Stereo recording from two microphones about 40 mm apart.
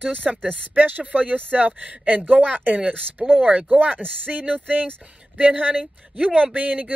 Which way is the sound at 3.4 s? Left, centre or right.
Right.